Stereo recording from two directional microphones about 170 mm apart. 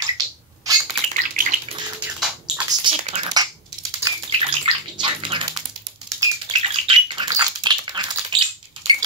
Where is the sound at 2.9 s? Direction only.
35° right (ahead or behind).